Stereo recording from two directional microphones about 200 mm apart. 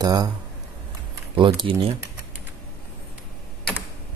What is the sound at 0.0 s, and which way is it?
Speech, 20° right (ahead or behind).